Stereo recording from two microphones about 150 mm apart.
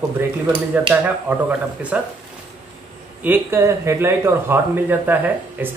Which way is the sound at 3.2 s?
15° right (ahead or behind).